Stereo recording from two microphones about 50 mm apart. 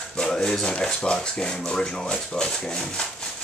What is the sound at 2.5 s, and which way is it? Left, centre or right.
Speech, centre.